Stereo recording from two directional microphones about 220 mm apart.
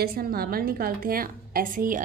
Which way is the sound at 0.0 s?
45° right (ahead or behind).